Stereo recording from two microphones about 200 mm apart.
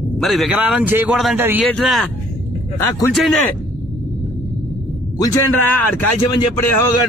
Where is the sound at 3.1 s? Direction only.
Centre (ahead or behind).